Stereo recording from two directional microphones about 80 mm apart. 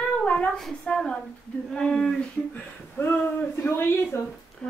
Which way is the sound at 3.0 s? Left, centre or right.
Left.